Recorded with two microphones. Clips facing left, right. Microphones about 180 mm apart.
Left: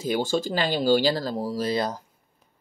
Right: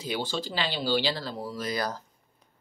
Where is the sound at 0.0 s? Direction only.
45° left (ahead or behind); by 2.0 s 20° left (ahead or behind).